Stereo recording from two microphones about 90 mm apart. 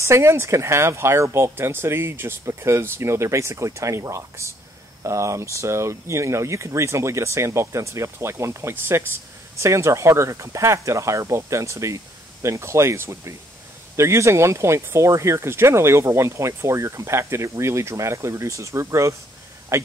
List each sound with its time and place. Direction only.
0.0 s speech: 30° right (ahead or behind)